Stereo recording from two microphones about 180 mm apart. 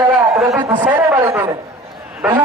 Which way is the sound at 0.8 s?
10° right (ahead or behind).